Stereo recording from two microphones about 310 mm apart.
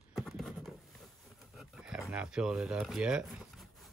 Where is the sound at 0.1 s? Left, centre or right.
Centre.